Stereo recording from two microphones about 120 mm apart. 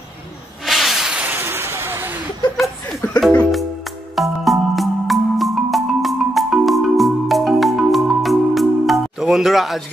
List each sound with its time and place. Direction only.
0.7 s hiss: centre (ahead or behind)
1.3 s a sound: 20° right (ahead or behind)
2.5 s chuckle: centre (ahead or behind)
4.1 s music: centre (ahead or behind)